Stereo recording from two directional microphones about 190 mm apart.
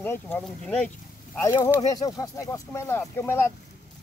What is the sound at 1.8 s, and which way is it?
Speech, 20° left (ahead or behind).